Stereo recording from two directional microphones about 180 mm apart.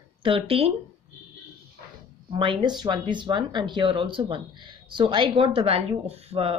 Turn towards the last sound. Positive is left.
turn(degrees=-35)  # may be behind; listen again after turning